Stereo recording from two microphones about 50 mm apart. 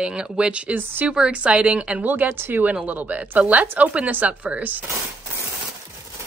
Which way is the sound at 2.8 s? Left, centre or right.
Right.